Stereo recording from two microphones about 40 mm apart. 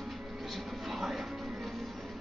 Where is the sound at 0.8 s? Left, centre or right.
Centre.